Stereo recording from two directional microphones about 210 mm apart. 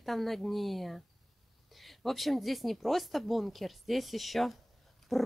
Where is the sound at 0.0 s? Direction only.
Centre (ahead or behind).